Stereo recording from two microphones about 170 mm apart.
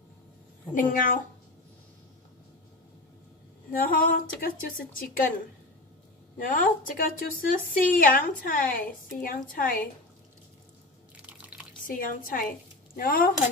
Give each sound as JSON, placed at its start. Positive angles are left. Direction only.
{"t": 0.7, "sound": "a woman's voice", "side_deg": 55}
{"t": 3.7, "sound": "a woman's voice", "side_deg": 55}
{"t": 6.3, "sound": "a woman's voice", "side_deg": 55}
{"t": 11.2, "sound": "drip", "side_deg": -10}
{"t": 11.9, "sound": "a woman's voice", "side_deg": 55}